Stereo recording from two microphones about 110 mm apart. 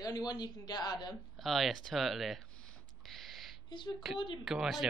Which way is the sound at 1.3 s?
Centre (ahead or behind).